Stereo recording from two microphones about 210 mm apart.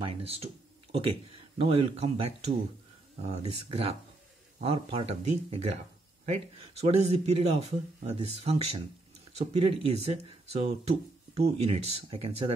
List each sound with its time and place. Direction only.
0.0 s speech: 30° right (ahead or behind)